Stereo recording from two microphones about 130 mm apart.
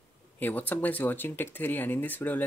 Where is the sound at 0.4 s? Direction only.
15° left (ahead or behind).